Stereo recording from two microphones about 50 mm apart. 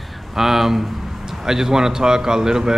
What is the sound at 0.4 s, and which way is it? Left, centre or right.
A man's voice, centre.